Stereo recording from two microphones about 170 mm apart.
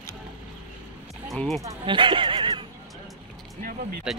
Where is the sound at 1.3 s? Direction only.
Centre (ahead or behind).